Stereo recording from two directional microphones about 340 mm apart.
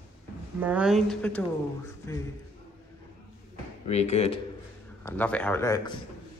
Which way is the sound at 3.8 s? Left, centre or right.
Centre.